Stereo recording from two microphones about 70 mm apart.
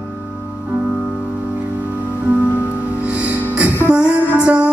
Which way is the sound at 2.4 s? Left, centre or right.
Left.